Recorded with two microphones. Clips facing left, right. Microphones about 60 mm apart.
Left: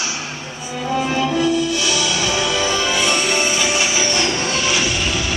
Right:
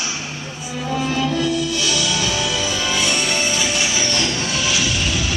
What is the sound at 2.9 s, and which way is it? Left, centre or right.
Music, centre.